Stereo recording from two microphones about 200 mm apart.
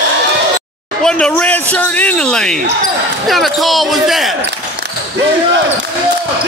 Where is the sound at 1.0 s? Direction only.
5° left (ahead or behind).